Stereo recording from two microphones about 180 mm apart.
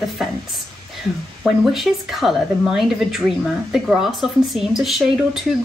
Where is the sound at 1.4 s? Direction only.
Centre (ahead or behind).